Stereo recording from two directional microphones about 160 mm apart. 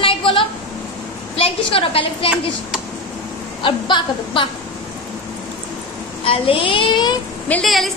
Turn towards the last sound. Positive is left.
turn(degrees=0)  # may be behind; listen again after turning